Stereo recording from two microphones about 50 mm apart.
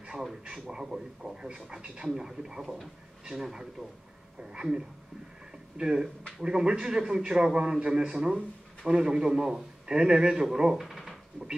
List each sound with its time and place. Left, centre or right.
0.2 s a man's voice: centre
2.6 s a man's voice: centre
10.8 s a sound: centre